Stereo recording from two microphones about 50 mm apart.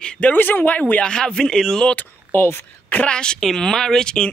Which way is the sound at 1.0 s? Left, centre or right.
Centre.